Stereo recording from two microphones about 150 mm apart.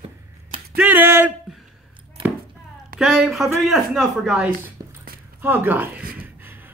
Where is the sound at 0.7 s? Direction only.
10° right (ahead or behind).